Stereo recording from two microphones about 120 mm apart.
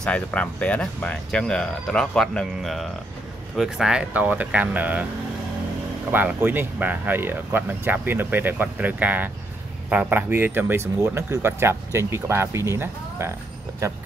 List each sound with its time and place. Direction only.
0.0 s speech: 10° left (ahead or behind); by 5.0 s 10° right (ahead or behind)
6.1 s speech: 15° right (ahead or behind)